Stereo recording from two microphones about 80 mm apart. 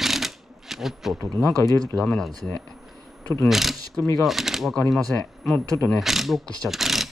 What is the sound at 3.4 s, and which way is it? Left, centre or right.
Speech, centre.